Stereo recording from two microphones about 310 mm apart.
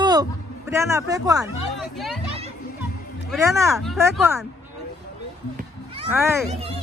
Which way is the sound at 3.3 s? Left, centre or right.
Centre.